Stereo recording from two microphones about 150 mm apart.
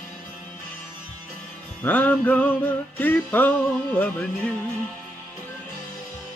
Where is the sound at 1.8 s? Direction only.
10° left (ahead or behind).